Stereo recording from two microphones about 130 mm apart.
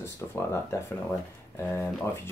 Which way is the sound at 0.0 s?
20° left (ahead or behind).